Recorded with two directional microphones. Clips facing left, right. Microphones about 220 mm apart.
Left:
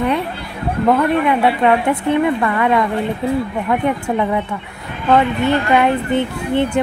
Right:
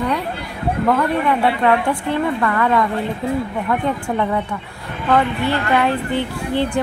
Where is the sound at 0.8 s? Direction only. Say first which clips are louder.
Left 4 dB; 20° left (ahead or behind).